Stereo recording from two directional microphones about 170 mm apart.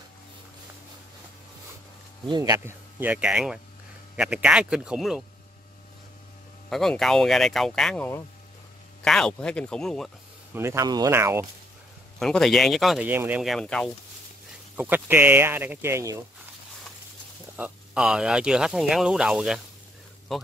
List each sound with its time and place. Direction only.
2.2 s speech: 25° right (ahead or behind); by 5.2 s 5° right (ahead or behind)
6.7 s speech: centre (ahead or behind)
10.5 s speech: 15° right (ahead or behind)
12.2 s speech: 5° left (ahead or behind)
13.1 s speech: 15° right (ahead or behind)
13.4 s speech: centre (ahead or behind)
14.8 s speech: 10° right (ahead or behind)
17.6 s speech: 5° right (ahead or behind)